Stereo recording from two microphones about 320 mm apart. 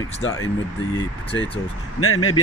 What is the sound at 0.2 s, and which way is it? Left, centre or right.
Speech, left.